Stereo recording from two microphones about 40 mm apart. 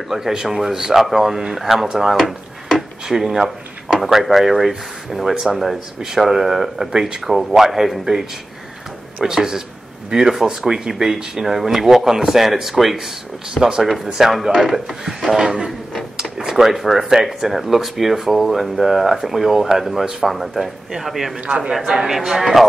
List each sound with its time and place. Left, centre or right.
0.1 s speech: centre
2.1 s drawer open or close: centre
3.1 s speech: centre
6.9 s speech: centre
13.6 s speech: centre
14.1 s speech: centre
21.4 s a man's voice: right
21.7 s speech: centre